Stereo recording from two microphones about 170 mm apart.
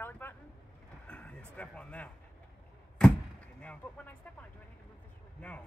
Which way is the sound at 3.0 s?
5° left (ahead or behind).